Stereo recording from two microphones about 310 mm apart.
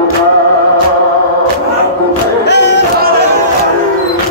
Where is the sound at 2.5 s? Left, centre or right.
Left.